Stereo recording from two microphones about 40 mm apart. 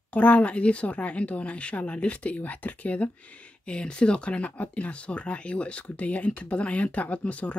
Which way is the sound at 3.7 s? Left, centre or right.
Left.